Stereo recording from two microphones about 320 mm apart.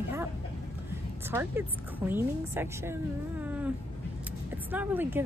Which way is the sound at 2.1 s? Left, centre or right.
Centre.